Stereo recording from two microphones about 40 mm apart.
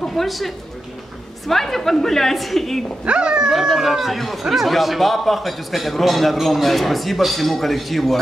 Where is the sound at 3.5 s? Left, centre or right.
Centre.